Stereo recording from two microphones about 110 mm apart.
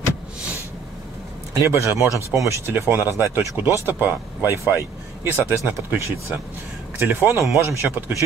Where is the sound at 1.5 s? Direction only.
25° right (ahead or behind).